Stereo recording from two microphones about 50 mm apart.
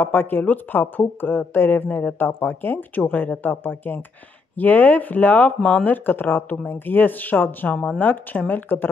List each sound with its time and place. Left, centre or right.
0.0 s speech: left
5.6 s speech: left
5.9 s speech: left